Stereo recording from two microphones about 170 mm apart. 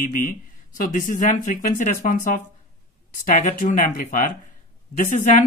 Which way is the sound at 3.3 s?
45° left (ahead or behind).